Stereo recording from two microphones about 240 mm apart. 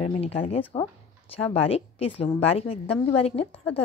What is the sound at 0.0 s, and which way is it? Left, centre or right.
A woman's voice, left.